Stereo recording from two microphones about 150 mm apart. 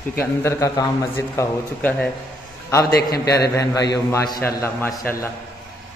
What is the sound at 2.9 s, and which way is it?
Speech, 90° left.